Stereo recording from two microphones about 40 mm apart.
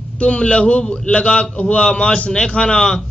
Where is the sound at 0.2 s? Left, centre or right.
Left.